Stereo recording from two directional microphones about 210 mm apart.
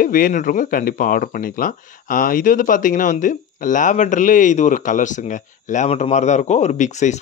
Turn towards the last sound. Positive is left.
turn(degrees=35)  # may be behind; listen again after turning